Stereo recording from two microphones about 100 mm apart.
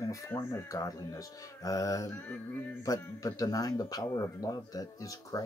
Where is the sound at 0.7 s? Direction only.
35° left (ahead or behind).